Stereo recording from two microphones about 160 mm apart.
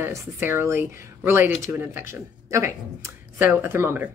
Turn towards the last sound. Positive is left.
turn(degrees=-15)  # may be behind; listen again after turning